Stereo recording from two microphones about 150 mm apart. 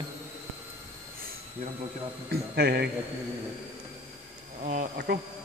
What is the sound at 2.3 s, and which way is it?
Speech, 90° right.